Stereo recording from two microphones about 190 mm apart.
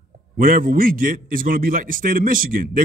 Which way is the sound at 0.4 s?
50° right (ahead or behind).